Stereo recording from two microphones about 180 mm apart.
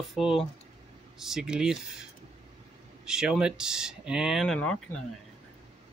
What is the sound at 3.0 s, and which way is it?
Speech, 5° right (ahead or behind).